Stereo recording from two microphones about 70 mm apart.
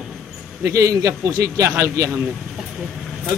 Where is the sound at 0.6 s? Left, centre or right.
Right.